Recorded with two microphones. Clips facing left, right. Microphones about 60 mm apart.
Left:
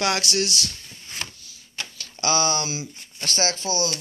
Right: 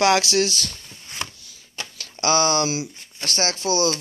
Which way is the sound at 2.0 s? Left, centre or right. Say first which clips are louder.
Right 3 dB; right.